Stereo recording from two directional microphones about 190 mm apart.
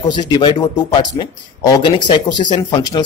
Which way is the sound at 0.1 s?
25° left (ahead or behind).